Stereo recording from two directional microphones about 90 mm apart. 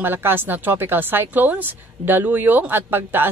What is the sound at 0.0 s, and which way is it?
A woman's voice, 25° right (ahead or behind).